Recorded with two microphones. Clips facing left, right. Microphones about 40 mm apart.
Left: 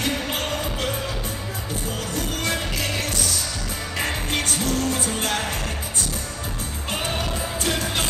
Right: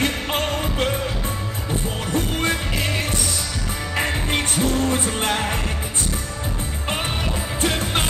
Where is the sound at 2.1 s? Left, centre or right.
Right.